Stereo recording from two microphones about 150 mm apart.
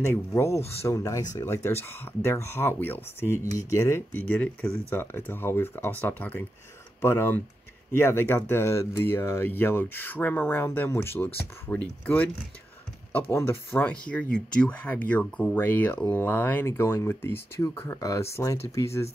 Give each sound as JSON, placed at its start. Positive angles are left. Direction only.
{"t": 0.0, "sound": "speech", "side_deg": 15}
{"t": 13.3, "sound": "speech", "side_deg": 15}